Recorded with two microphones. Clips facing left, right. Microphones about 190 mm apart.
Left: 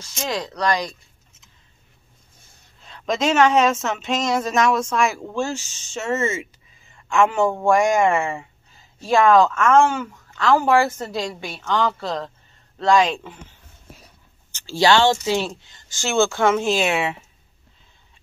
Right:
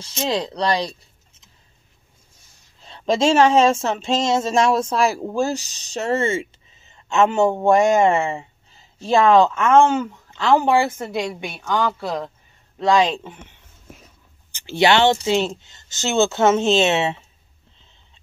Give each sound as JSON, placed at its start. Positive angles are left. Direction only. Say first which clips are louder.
{"t": 0.0, "sound": "speech", "louder": "right 4 dB", "side_deg": -30}
{"t": 2.8, "sound": "speech", "louder": "right 4 dB", "side_deg": -30}
{"t": 11.0, "sound": "a woman's voice", "louder": "right 2 dB", "side_deg": -10}
{"t": 12.7, "sound": "speech", "louder": "even", "side_deg": -20}